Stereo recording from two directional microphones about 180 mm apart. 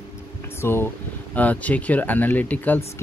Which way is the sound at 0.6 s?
10° left (ahead or behind).